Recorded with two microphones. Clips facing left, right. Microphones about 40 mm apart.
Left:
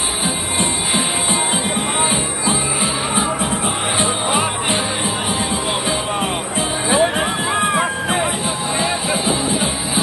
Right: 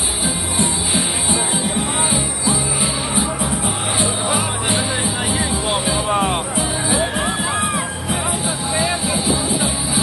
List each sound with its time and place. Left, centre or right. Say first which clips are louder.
0.6 s music: left 1 dB; left
3.2 s music: left 1 dB; left
7.0 s music: left 3 dB; centre
9.1 s music: left 1 dB; left